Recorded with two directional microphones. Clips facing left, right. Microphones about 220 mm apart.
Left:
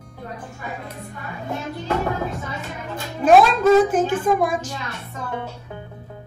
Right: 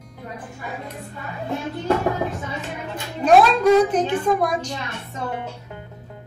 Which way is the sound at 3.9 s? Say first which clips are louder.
Left 1 dB; 5° left (ahead or behind).